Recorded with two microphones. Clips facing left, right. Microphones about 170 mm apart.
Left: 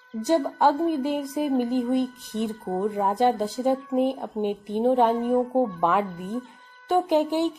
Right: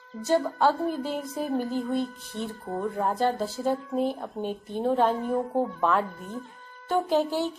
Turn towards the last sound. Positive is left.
turn(degrees=15)  # may be behind; listen again after turning